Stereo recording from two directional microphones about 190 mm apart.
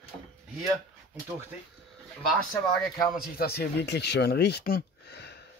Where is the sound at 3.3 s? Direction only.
55° left (ahead or behind).